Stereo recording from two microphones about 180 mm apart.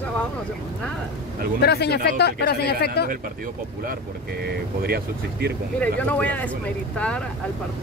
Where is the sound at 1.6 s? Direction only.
65° left (ahead or behind).